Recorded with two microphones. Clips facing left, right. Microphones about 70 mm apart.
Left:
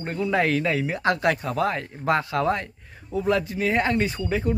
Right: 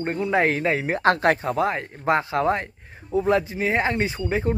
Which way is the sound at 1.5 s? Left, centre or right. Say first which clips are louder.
Right 1 dB; right.